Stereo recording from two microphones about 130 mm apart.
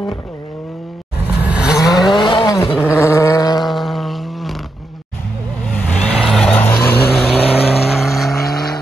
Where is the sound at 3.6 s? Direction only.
Centre (ahead or behind).